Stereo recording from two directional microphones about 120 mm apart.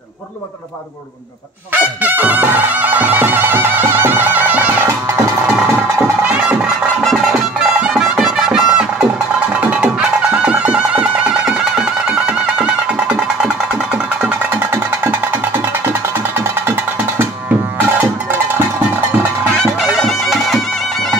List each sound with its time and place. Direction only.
1.7 s music: 15° right (ahead or behind)
7.1 s music: 5° right (ahead or behind)
19.6 s music: centre (ahead or behind)